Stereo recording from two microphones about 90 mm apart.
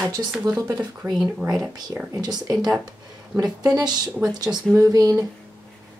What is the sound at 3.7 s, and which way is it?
A woman's voice, 50° right (ahead or behind).